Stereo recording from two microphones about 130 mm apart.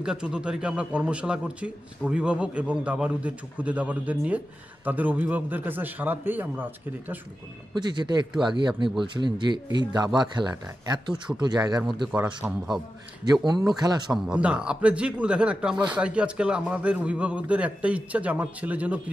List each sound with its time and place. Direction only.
0.0 s a man's voice: 5° right (ahead or behind)
7.7 s speech: 35° right (ahead or behind)
12.1 s a man's voice: 10° right (ahead or behind)
13.5 s speech: 30° right (ahead or behind)
14.1 s a man's voice: 5° right (ahead or behind)